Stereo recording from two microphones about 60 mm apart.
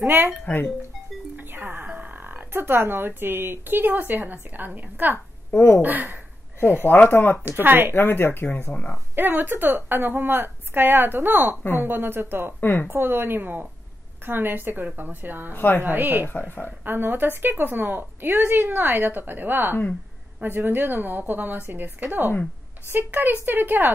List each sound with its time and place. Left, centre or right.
0.0 s a woman's voice: right
5.5 s speech: left
5.8 s a woman's voice: right
6.6 s speech: left
7.4 s a woman's voice: right
7.9 s speech: left
9.1 s a woman's voice: right
15.5 s speech: left
15.8 s a woman's voice: right
16.3 s speech: left
16.8 s a woman's voice: right